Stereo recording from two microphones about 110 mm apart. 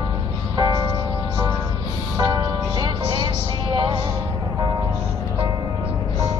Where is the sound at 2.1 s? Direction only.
40° right (ahead or behind).